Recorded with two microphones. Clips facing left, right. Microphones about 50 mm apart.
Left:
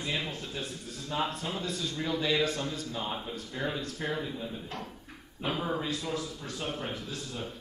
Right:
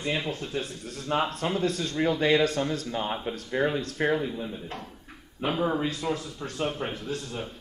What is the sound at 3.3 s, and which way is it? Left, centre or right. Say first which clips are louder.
Speech: right 7 dB; right.